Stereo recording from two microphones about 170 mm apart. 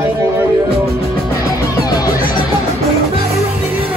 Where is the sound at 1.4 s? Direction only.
20° left (ahead or behind).